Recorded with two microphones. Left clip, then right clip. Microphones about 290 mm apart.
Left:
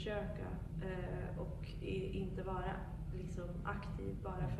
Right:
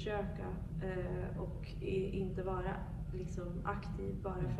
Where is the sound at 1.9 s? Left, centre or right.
Centre.